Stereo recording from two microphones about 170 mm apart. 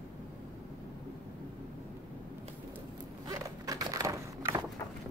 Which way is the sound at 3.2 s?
20° right (ahead or behind).